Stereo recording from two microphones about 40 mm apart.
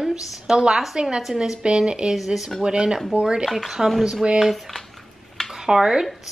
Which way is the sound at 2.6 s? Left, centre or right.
Right.